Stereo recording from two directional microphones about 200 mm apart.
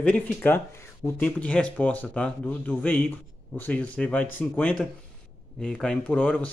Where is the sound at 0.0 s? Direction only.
5° left (ahead or behind).